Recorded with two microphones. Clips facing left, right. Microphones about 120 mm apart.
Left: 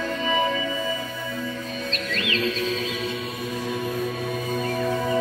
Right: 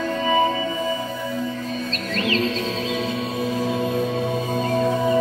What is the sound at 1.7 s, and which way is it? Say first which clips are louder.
Music: right 3 dB; 40° right (ahead or behind).